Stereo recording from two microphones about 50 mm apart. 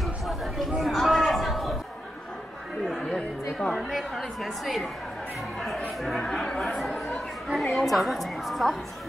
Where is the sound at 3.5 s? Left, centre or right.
Centre.